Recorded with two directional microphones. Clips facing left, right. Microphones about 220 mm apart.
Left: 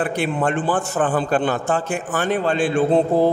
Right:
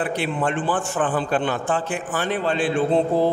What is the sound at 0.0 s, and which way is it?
A man's voice, 50° left (ahead or behind).